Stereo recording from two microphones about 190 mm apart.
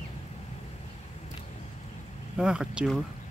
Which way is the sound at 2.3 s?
5° right (ahead or behind).